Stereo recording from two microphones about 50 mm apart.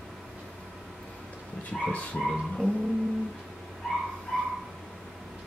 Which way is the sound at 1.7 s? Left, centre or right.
Centre.